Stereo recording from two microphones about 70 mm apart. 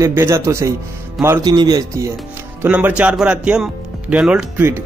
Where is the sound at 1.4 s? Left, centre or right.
Right.